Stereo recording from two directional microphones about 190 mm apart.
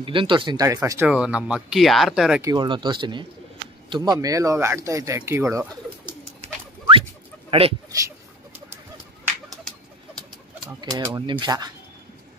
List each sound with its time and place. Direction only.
0.0 s speech: 25° right (ahead or behind)
0.7 s speech: 10° right (ahead or behind)
2.4 s speech: 25° right (ahead or behind)
6.4 s a sound: 30° right (ahead or behind)
7.9 s speech: 20° right (ahead or behind)
10.8 s speech: 20° right (ahead or behind)